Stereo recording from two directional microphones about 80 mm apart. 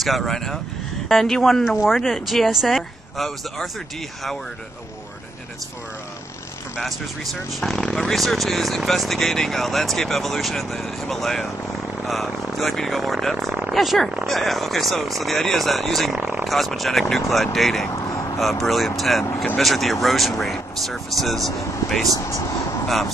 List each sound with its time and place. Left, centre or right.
0.0 s speech: centre
7.6 s speech: centre
16.2 s a sound: right
16.4 s speech: centre
18.0 s vehicle: left
18.4 s speech: centre
22.2 s speech: left
22.8 s speech: centre